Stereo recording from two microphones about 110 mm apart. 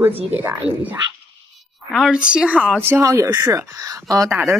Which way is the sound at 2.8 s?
25° right (ahead or behind).